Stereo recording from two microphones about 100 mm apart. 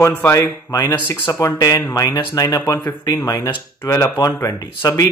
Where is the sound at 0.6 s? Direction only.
40° left (ahead or behind).